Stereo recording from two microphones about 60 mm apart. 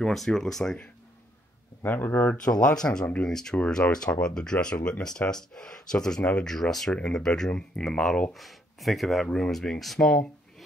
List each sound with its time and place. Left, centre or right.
0.0 s speech: centre
1.8 s speech: left
2.8 s speech: centre
3.5 s speech: left
6.5 s speech: centre
6.9 s speech: centre
7.2 s speech: centre